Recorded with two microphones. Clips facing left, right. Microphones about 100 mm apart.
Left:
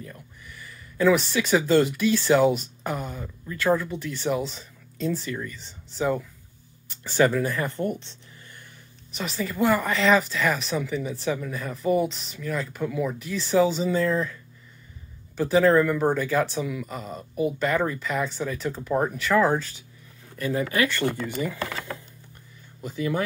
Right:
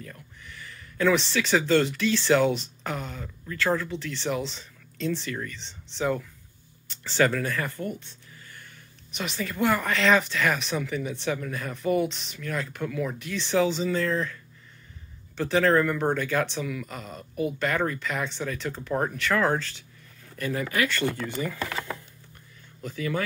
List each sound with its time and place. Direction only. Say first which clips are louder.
0.0 s a sound: left 2 dB; 10° left (ahead or behind)
1.3 s speech: left 2 dB; 10° left (ahead or behind)
9.1 s speech: left 2 dB; centre (ahead or behind)
20.4 s speech: left 3 dB; 20° left (ahead or behind)
22.8 s speech: left 3 dB; 15° left (ahead or behind)